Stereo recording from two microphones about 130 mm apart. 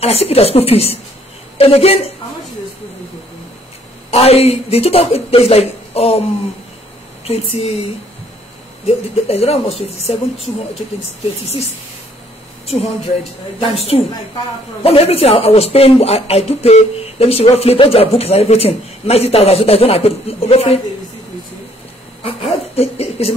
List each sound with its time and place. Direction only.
0.0 s a man's voice: 50° left (ahead or behind)
4.1 s a man's voice: 50° left (ahead or behind)
7.2 s a man's voice: 50° left (ahead or behind)
8.8 s a man's voice: 50° left (ahead or behind)
13.6 s a man's voice: 50° left (ahead or behind)
22.2 s a sound: 55° left (ahead or behind)